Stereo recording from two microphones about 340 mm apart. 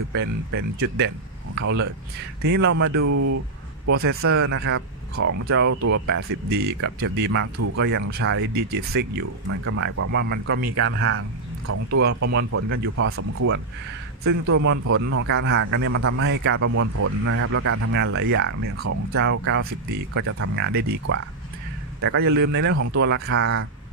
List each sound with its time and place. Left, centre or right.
0.1 s speech: right
3.1 s speech: right
3.9 s a man's voice: right
12.0 s speech: right
12.4 s a man's voice: right
22.0 s a man's voice: right